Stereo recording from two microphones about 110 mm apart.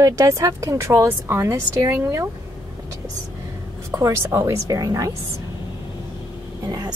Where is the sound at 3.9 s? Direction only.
25° right (ahead or behind).